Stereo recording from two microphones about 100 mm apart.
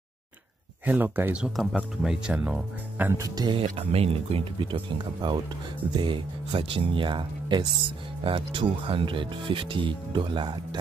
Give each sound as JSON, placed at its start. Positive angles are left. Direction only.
{"t": 0.8, "sound": "speech", "side_deg": -20}
{"t": 3.1, "sound": "speech", "side_deg": -35}
{"t": 3.5, "sound": "speech", "side_deg": -80}
{"t": 4.6, "sound": "speech", "side_deg": -55}